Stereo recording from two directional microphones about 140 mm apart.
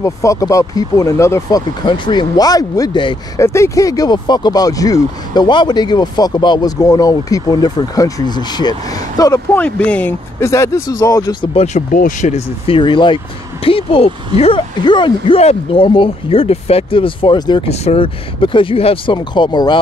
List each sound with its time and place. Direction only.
0.0 s speech: 20° left (ahead or behind)
1.9 s speech: 35° left (ahead or behind)
3.3 s speech: 20° left (ahead or behind)
9.6 s speech: 10° left (ahead or behind); by 11.3 s 25° left (ahead or behind)
11.5 s speech: 55° left (ahead or behind)
12.6 s speech: 40° left (ahead or behind)
17.6 s speech: 50° left (ahead or behind); by 19.8 s 35° left (ahead or behind)